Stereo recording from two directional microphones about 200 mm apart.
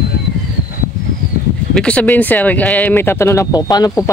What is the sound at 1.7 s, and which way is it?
Speech, 5° left (ahead or behind).